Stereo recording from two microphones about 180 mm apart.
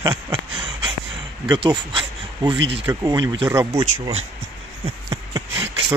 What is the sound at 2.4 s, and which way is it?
Speech, 25° right (ahead or behind).